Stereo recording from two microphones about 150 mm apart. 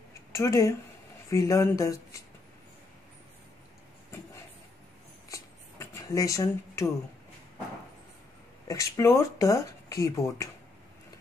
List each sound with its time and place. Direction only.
0.3 s speech: 20° left (ahead or behind)
5.3 s a sound: 20° left (ahead or behind)
8.6 s speech: 20° left (ahead or behind)